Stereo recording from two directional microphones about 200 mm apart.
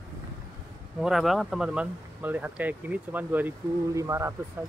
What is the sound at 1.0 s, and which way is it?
Speech, centre (ahead or behind).